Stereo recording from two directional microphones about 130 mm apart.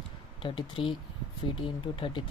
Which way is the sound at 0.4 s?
40° left (ahead or behind).